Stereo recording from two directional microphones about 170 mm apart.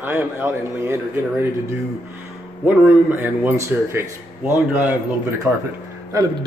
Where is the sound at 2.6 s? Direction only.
10° right (ahead or behind).